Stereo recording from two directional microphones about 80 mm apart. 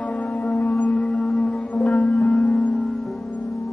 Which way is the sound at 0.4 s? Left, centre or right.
Centre.